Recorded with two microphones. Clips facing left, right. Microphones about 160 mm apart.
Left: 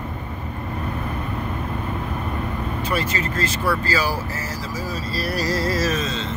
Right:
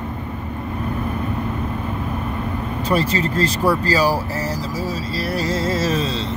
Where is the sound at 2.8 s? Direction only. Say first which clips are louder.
Right 6 dB; 35° right (ahead or behind).